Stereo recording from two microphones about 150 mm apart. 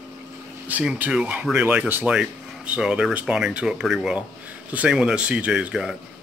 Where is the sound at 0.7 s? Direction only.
10° right (ahead or behind).